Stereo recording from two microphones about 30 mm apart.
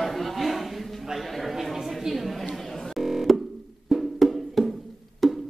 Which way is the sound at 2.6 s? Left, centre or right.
Centre.